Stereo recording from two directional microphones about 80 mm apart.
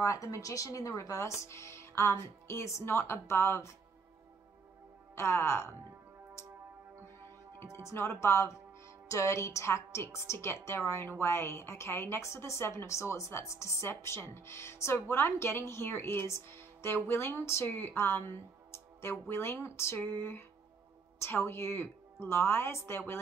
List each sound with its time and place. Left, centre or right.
0.0 s a woman's voice: left
5.1 s speech: left
7.2 s speech: left